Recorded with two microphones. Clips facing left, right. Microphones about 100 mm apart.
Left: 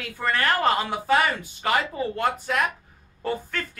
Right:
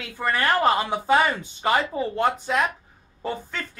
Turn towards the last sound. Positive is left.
turn(degrees=-15)  # may be behind; listen again after turning